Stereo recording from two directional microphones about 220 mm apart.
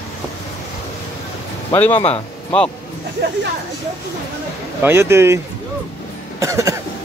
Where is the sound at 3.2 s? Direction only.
50° right (ahead or behind).